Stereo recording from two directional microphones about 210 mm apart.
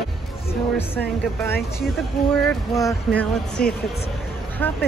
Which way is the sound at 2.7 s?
15° left (ahead or behind).